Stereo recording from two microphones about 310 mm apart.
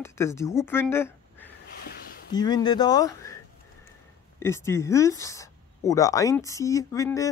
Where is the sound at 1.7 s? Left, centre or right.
Left.